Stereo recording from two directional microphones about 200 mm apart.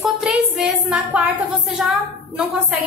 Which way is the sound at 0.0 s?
Centre (ahead or behind).